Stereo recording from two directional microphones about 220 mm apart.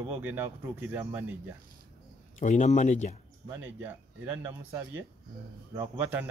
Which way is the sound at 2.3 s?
35° left (ahead or behind).